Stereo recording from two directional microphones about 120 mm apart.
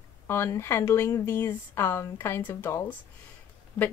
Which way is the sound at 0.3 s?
20° left (ahead or behind).